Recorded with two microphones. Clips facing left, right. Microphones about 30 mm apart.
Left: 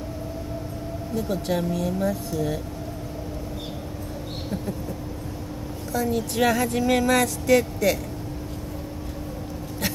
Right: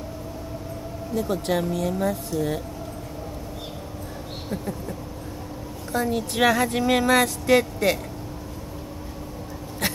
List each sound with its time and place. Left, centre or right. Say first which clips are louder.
1.1 s speech: right 2 dB; right
5.9 s speech: even; right